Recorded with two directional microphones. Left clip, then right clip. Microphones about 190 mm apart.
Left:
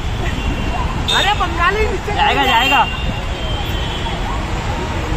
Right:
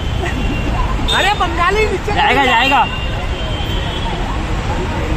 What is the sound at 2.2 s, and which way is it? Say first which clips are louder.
Speech: right 1 dB; 35° right (ahead or behind).